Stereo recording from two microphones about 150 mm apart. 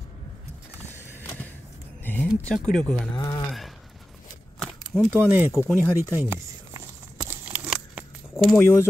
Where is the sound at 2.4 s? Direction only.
5° left (ahead or behind).